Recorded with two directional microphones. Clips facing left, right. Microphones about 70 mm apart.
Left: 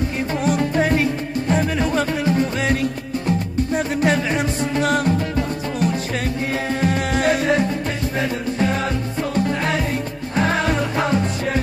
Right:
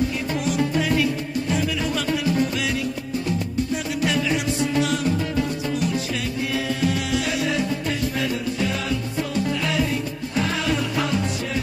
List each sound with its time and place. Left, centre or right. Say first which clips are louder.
0.4 s music: left 4 dB; left